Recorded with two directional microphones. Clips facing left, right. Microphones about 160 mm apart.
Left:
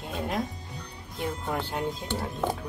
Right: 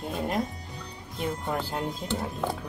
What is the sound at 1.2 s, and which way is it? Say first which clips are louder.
Speech: right 1 dB; centre (ahead or behind).